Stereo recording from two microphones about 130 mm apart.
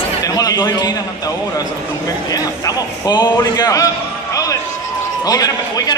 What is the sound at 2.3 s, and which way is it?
A man's voice, 30° left (ahead or behind).